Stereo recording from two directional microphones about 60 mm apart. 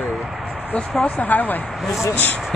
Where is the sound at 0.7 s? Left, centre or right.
Centre.